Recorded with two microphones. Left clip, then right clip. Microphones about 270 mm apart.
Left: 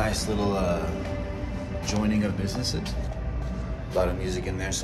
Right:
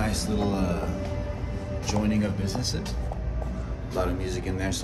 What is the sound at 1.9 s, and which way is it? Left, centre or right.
Speech, centre.